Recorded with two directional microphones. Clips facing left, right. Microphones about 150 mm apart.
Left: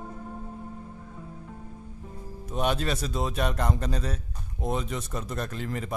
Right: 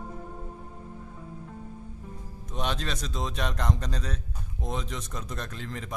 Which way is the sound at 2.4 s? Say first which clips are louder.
Left 5 dB; 10° left (ahead or behind).